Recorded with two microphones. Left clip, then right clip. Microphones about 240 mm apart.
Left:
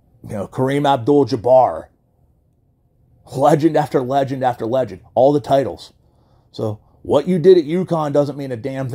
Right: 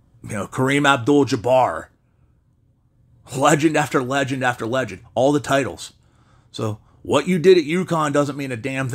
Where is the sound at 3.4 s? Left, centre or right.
Centre.